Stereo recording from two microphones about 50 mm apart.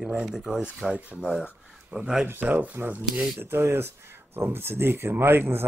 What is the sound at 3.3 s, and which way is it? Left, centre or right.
Speech, right.